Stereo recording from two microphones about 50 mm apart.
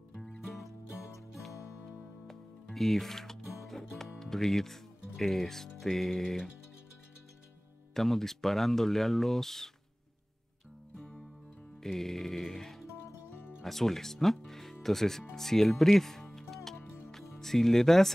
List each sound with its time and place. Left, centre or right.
1.5 s music: left
1.9 s music: centre
4.2 s speech: centre
7.9 s speech: centre
11.8 s speech: centre
16.3 s music: centre